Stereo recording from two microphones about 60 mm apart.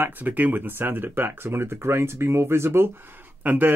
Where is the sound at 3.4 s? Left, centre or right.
Right.